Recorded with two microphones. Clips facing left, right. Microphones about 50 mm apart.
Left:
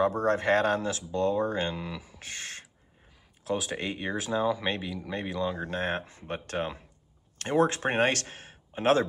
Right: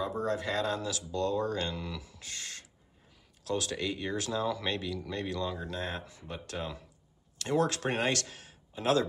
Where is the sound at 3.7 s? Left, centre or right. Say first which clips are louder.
Left 2 dB; left.